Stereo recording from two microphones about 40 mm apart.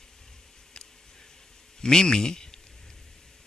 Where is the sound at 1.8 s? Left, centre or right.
Centre.